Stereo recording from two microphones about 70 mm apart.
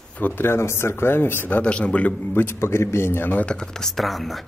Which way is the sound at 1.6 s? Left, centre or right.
Centre.